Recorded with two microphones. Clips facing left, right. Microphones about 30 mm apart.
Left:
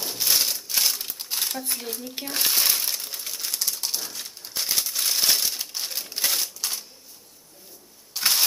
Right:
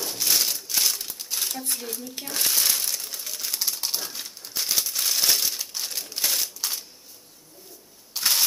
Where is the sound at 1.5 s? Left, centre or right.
Centre.